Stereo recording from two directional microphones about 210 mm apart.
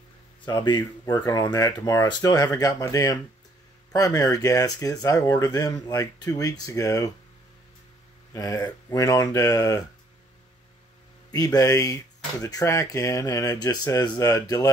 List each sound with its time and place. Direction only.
0.5 s speech: 20° left (ahead or behind)
8.3 s speech: 15° left (ahead or behind)
11.3 s speech: 15° left (ahead or behind)